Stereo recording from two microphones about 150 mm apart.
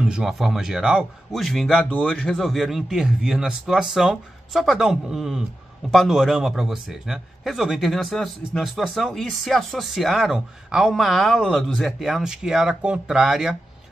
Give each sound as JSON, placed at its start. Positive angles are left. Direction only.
{"t": 0.0, "sound": "speech", "side_deg": -5}